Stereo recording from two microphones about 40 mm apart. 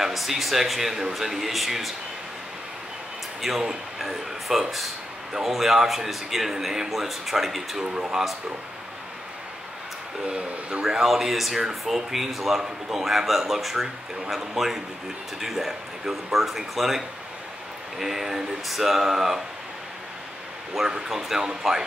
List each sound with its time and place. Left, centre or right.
0.0 s speech: centre
3.3 s a man's voice: centre
7.8 s speech: right
10.2 s speech: right
11.1 s speech: centre
20.8 s speech: centre